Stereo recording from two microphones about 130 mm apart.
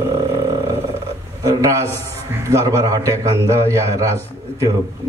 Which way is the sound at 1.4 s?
25° right (ahead or behind).